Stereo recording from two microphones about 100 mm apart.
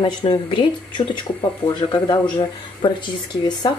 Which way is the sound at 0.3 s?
50° left (ahead or behind).